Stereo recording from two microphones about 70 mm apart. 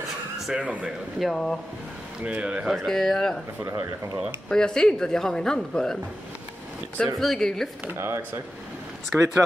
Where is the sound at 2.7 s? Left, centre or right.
Centre.